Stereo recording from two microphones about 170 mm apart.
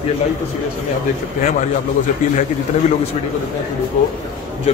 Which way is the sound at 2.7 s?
40° left (ahead or behind).